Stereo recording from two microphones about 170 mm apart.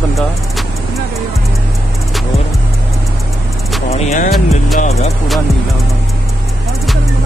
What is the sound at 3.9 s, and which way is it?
Speech, 45° left (ahead or behind).